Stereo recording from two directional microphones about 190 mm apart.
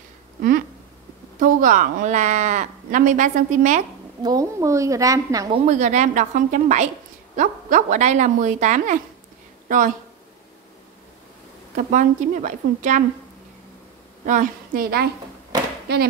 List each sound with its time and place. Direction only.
0.4 s a sound: 50° right (ahead or behind)
1.4 s speech: 45° right (ahead or behind)
4.2 s a woman's voice: 20° right (ahead or behind)
5.5 s speech: 40° right (ahead or behind)
11.7 s speech: 45° right (ahead or behind)
14.2 s speech: 45° right (ahead or behind)